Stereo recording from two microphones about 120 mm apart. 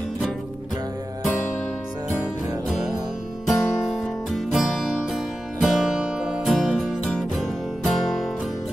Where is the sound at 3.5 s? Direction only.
Centre (ahead or behind).